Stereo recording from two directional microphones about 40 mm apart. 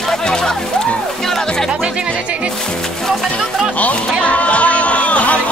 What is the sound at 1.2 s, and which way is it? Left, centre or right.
Music, centre.